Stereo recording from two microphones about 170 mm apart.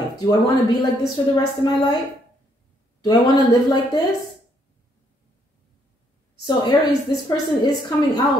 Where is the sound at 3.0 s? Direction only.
25° left (ahead or behind).